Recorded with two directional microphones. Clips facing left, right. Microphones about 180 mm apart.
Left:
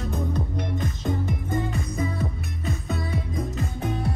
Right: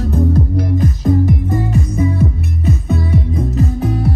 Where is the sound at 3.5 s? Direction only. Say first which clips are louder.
Right 10 dB; 35° right (ahead or behind).